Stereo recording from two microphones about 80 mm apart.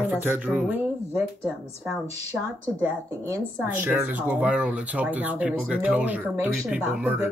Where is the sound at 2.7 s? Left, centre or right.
Right.